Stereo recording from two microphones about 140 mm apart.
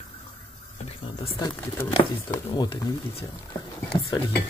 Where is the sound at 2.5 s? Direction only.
35° left (ahead or behind).